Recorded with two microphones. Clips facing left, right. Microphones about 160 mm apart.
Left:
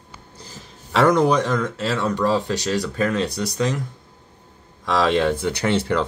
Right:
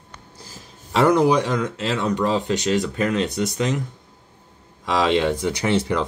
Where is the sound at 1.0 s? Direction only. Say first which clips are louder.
Even; 10° right (ahead or behind).